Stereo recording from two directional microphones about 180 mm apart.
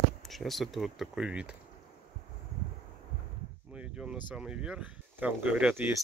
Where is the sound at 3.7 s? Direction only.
5° right (ahead or behind).